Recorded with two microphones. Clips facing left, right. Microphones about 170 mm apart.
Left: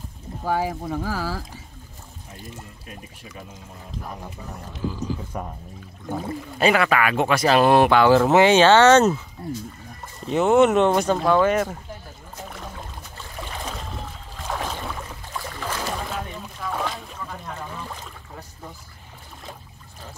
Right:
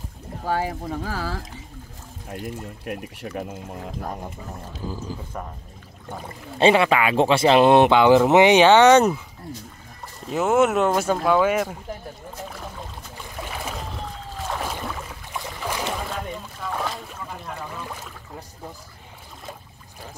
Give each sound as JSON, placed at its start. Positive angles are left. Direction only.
{"t": 0.5, "sound": "speech", "side_deg": 5}
{"t": 2.2, "sound": "speech", "side_deg": -65}
{"t": 5.3, "sound": "speech", "side_deg": 10}
{"t": 6.6, "sound": "speech", "side_deg": -25}
{"t": 10.2, "sound": "speech", "side_deg": -5}
{"t": 13.5, "sound": "boat", "side_deg": -10}
{"t": 15.3, "sound": "boat", "side_deg": -15}
{"t": 16.7, "sound": "boat", "side_deg": 0}